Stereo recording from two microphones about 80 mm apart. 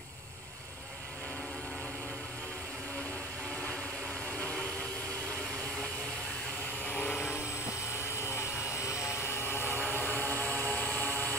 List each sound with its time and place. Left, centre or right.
4.4 s vehicle: centre
6.9 s vehicle: left
8.2 s helicopter: left